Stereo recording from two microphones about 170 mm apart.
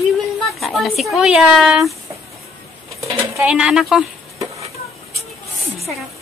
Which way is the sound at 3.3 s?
5° right (ahead or behind).